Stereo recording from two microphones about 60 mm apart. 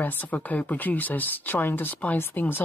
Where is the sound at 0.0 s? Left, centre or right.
Left.